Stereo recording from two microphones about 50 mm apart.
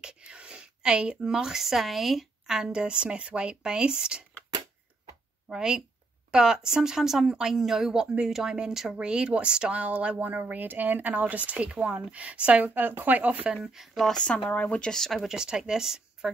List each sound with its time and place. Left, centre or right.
0.0 s a woman's voice: right
5.5 s a woman's voice: centre
9.8 s speech: right
13.7 s a woman's voice: centre
14.0 s speech: centre
14.5 s speech: left
14.9 s speech: centre
15.1 s a woman's voice: centre